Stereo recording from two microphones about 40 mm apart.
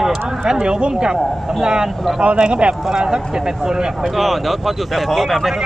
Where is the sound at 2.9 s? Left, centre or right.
Centre.